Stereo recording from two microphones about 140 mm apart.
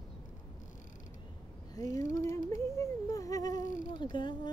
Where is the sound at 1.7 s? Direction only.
25° left (ahead or behind).